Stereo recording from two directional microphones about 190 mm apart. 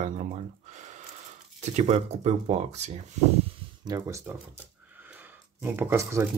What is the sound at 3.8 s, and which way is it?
Speech, 20° right (ahead or behind).